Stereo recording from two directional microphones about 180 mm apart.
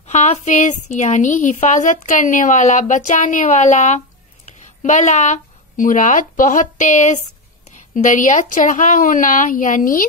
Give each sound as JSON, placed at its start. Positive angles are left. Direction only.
{"t": 0.0, "sound": "a woman's voice", "side_deg": 40}